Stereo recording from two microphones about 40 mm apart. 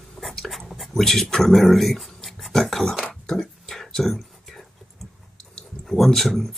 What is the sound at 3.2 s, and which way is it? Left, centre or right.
Speech, centre.